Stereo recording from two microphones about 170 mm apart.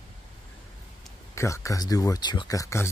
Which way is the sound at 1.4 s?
20° left (ahead or behind).